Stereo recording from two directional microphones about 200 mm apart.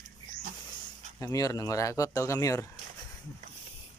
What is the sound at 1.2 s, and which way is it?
Speech, 15° left (ahead or behind).